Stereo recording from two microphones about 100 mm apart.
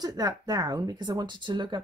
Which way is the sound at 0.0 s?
40° right (ahead or behind).